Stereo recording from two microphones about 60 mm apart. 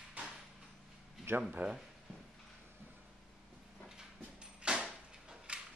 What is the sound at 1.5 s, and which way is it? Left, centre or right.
Speech, centre.